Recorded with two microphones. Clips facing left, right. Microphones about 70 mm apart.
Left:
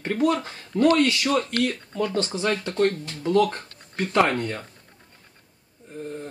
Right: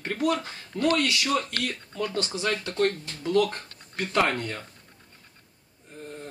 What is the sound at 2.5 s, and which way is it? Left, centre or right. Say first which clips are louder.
Speech: left 3 dB; centre.